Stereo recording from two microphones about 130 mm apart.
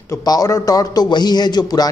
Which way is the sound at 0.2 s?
30° left (ahead or behind).